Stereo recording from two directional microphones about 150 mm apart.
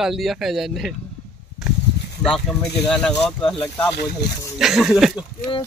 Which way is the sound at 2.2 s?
5° left (ahead or behind).